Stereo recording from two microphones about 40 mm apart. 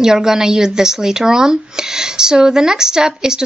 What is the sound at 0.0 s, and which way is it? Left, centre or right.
Speech, centre.